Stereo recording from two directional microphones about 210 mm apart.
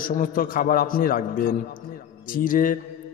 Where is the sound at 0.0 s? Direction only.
40° left (ahead or behind).